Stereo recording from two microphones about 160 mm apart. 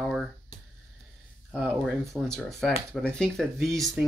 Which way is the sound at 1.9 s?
5° left (ahead or behind).